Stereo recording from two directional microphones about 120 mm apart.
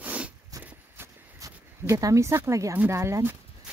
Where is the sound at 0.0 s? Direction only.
10° right (ahead or behind).